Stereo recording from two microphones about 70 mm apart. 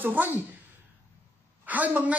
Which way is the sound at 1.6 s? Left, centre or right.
Right.